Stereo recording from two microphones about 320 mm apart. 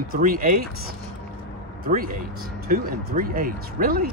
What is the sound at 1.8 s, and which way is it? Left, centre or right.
Speech, right.